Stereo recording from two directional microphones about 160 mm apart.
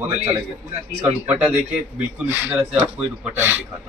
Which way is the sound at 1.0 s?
10° right (ahead or behind).